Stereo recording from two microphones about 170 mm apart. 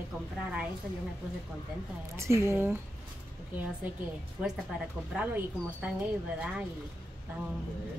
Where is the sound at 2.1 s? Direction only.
15° right (ahead or behind).